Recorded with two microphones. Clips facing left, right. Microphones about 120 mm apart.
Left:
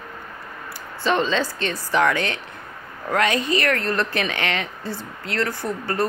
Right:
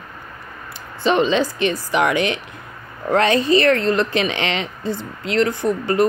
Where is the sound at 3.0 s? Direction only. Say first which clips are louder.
Right 5 dB; 30° right (ahead or behind).